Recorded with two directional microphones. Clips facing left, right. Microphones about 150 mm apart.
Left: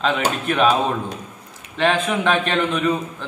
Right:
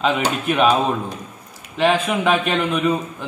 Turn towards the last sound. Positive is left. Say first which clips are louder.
# right 1 dB
turn(degrees=-10)  # may be behind; listen again after turning